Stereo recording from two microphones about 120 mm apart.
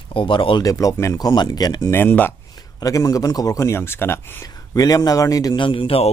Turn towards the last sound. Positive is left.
turn(degrees=50)  # may be behind; listen again after turning